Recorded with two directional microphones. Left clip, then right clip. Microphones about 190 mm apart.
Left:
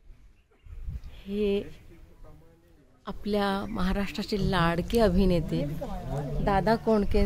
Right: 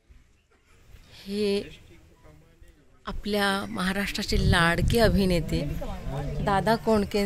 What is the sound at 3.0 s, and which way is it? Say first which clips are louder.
Speech: right 2 dB; 5° left (ahead or behind).